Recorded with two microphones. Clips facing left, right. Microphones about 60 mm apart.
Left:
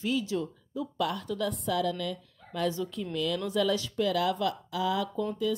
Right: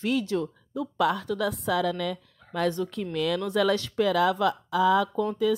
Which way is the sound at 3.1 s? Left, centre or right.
Right.